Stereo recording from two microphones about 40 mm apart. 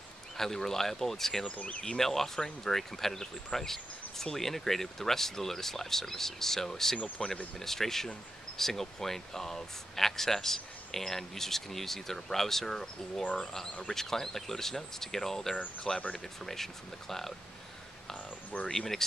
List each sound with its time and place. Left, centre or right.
0.4 s speech: centre
1.4 s speech: left
1.8 s speech: centre
18.7 s speech: centre